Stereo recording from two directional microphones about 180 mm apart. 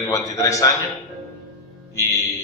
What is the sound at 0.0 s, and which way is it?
Speech, 20° left (ahead or behind).